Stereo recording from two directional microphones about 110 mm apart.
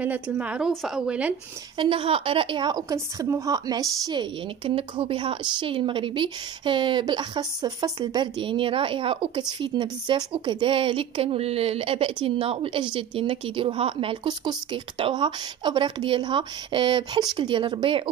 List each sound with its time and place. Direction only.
0.0 s a woman's voice: 15° right (ahead or behind)
1.8 s a woman's voice: 55° right (ahead or behind)
2.9 s a woman's voice: 30° right (ahead or behind); by 18.1 s 50° right (ahead or behind)